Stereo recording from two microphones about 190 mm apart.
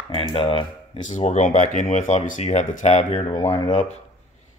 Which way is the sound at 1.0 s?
40° left (ahead or behind).